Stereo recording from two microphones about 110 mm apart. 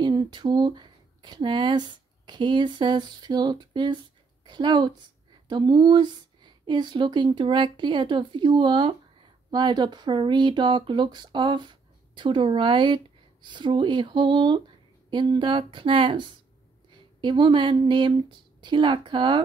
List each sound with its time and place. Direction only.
0.0 s speech: 40° right (ahead or behind)